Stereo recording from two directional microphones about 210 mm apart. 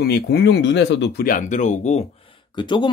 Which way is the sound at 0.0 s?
50° left (ahead or behind).